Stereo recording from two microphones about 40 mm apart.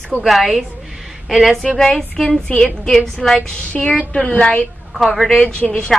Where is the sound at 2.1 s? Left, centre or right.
Centre.